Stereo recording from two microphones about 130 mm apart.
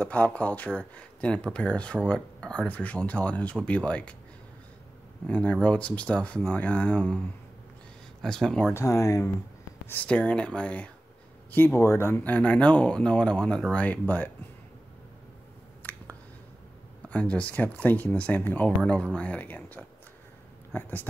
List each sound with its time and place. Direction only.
0.0 s speech: 10° left (ahead or behind)
5.2 s speech: 10° left (ahead or behind)
8.2 s speech: 5° left (ahead or behind)
8.7 s speech: 25° left (ahead or behind)
9.8 s speech: 10° left (ahead or behind)
15.8 s a sound: 15° left (ahead or behind)
17.1 s speech: 10° left (ahead or behind)